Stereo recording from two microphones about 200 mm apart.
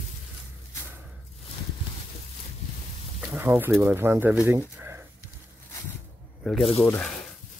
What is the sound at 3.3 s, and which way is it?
Speech, 10° right (ahead or behind).